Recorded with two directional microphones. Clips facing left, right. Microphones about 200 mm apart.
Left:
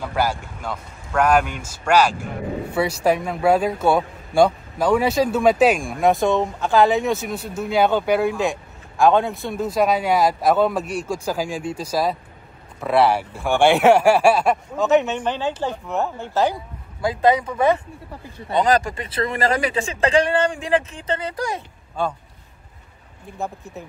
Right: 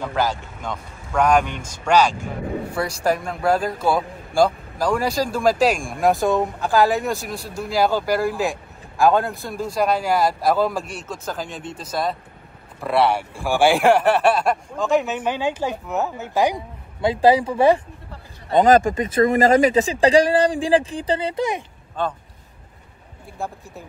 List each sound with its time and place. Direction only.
0.0 s a man's voice: 10° left (ahead or behind); by 17.8 s 30° right (ahead or behind)
18.5 s speech: 45° right (ahead or behind); by 21.6 s 20° right (ahead or behind)
22.0 s a man's voice: 10° left (ahead or behind)